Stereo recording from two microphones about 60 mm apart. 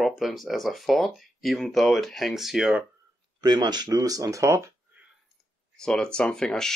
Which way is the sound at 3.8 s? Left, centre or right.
Right.